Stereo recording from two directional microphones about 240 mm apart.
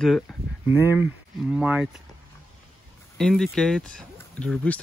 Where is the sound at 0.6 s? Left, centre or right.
Centre.